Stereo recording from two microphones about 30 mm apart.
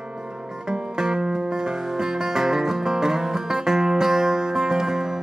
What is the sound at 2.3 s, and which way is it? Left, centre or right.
Music, centre.